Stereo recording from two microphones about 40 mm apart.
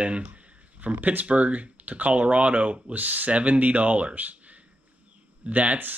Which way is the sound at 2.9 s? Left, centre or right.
Right.